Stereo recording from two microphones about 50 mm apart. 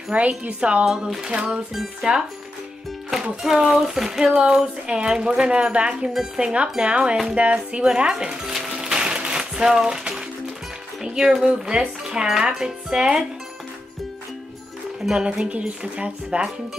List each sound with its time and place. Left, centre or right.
0.1 s a woman's voice: right
0.8 s speech: centre
1.3 s a woman's voice: right
3.1 s a woman's voice: centre; by 7.8 s right
7.8 s music: centre
11.1 s speech: centre
15.1 s a woman's voice: centre